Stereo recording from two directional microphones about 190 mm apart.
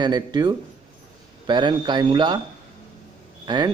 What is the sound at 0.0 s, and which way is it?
Speech, 20° right (ahead or behind).